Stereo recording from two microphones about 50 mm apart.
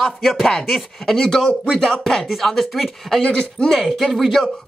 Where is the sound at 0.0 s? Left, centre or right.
Centre.